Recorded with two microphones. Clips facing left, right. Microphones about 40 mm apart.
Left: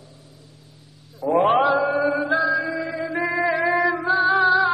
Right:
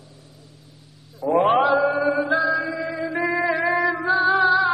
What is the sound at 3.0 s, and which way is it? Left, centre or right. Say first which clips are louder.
Music: right 2 dB; left.